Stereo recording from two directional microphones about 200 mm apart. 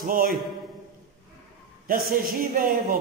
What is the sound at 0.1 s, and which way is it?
Speech, 45° right (ahead or behind).